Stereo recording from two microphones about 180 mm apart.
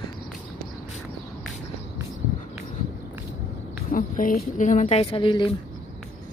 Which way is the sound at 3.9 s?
50° left (ahead or behind).